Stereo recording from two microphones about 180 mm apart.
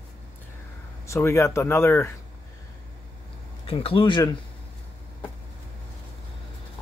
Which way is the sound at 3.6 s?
30° left (ahead or behind).